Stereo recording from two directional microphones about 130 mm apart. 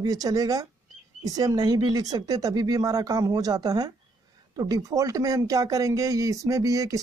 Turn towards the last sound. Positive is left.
turn(degrees=-25)  # may be behind; listen again after turning